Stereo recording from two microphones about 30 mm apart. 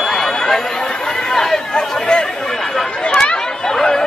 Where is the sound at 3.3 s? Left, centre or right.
Left.